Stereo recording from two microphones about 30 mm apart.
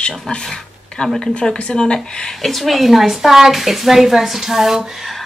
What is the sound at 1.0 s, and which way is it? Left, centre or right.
Speech, left.